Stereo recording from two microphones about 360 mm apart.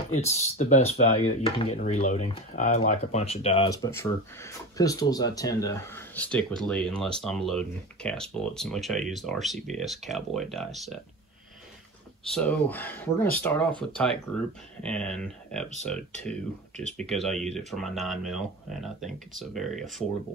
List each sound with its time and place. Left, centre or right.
0.1 s speech: centre
12.3 s speech: centre
16.9 s speech: centre